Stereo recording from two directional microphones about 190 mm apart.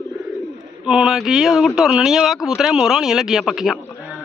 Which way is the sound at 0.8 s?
5° right (ahead or behind).